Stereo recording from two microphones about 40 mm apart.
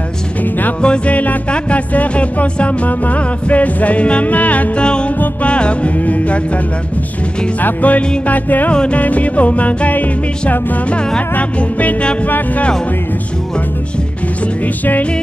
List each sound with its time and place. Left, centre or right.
0.4 s music: left
0.8 s music: left
4.7 s music: left
7.6 s music: left
10.9 s music: left
12.3 s music: left